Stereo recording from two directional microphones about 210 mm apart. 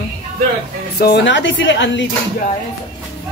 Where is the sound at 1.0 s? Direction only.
55° left (ahead or behind).